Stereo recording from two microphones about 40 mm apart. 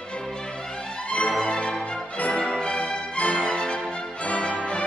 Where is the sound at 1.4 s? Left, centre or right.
Left.